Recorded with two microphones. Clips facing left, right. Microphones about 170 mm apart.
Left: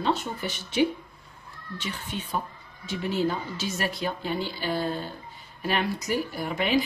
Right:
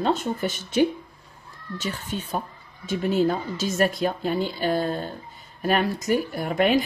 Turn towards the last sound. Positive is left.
turn(degrees=-50)  # may be behind; listen again after turning